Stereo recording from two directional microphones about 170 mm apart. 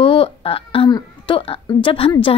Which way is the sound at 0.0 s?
30° left (ahead or behind).